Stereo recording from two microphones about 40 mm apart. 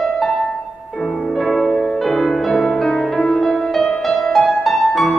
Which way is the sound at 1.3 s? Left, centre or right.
Centre.